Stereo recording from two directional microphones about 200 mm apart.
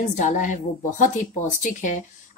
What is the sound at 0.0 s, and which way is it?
A woman's voice, 40° left (ahead or behind).